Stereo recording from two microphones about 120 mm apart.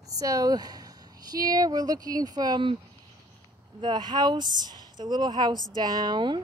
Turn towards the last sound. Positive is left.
turn(degrees=-40)  # may be behind; listen again after turning